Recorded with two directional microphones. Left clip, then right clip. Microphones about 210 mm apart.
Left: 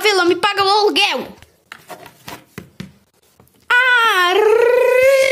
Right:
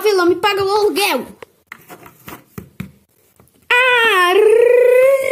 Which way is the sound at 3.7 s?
45° left (ahead or behind).